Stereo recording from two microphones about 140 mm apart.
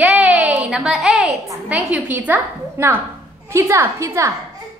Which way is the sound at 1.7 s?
10° right (ahead or behind).